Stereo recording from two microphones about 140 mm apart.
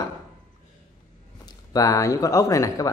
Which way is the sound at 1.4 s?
25° left (ahead or behind).